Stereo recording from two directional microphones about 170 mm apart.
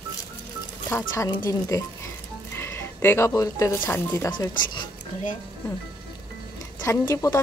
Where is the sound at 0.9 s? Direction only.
15° left (ahead or behind).